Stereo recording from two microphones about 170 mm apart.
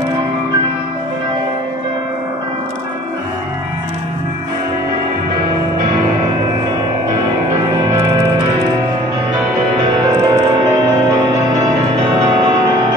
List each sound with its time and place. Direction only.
9.8 s music: 25° right (ahead or behind)
11.9 s music: 25° right (ahead or behind)